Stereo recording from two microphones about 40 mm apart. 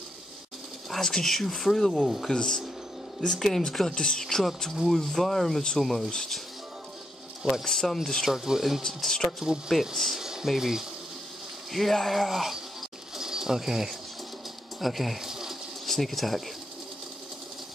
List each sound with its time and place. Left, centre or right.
0.8 s a sound: centre
1.1 s speech: centre
2.2 s speech: centre
3.4 s speech: centre
3.9 s speech: centre
4.8 s speech: centre
6.0 s speech: centre
7.6 s speech: centre
8.3 s speech: centre
8.8 s speech: centre
9.4 s speech: centre
11.7 s speech: centre
13.1 s pigeon: centre
14.8 s speech: centre